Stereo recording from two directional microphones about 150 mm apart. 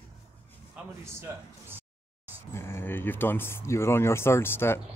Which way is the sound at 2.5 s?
15° left (ahead or behind).